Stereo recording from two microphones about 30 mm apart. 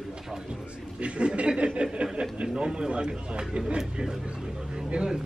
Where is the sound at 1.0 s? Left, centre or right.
Right.